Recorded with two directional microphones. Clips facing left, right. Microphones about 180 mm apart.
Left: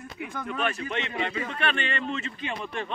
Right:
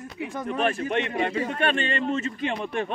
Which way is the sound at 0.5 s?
45° right (ahead or behind).